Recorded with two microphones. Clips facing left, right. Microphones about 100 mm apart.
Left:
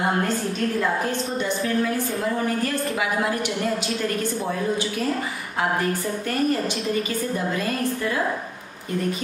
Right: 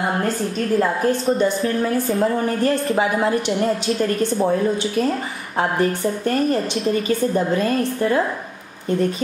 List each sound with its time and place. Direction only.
1.4 s a woman's voice: 35° right (ahead or behind)
5.6 s a woman's voice: 35° right (ahead or behind)